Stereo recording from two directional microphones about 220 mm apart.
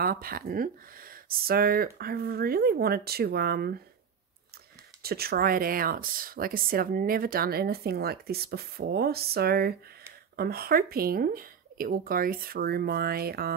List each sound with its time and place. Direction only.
0.0 s speech: 40° right (ahead or behind)
5.0 s speech: 45° right (ahead or behind)